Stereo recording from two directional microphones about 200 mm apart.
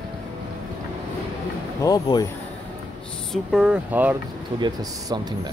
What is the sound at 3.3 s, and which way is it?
Speech, centre (ahead or behind).